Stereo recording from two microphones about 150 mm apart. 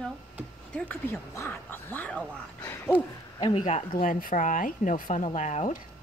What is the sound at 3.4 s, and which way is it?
Speech, 35° left (ahead or behind).